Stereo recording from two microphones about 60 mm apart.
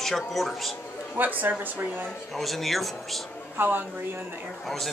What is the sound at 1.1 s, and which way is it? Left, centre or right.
Speech, right.